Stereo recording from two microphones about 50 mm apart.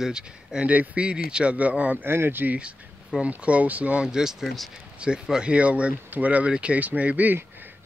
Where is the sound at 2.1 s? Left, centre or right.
Right.